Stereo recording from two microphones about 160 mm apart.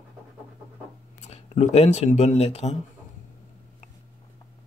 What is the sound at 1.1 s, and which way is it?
Speech, 45° left (ahead or behind).